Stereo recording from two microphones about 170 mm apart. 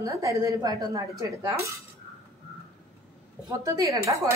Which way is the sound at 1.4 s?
20° right (ahead or behind).